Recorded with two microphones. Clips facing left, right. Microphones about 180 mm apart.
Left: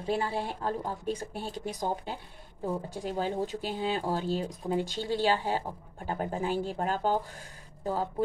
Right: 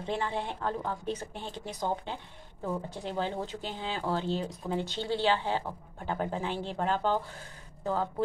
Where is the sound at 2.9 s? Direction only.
10° left (ahead or behind).